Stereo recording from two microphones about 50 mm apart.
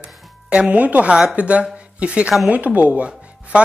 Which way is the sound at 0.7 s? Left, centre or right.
Right.